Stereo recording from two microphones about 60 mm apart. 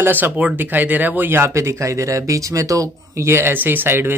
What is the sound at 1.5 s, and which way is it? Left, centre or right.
Speech, right.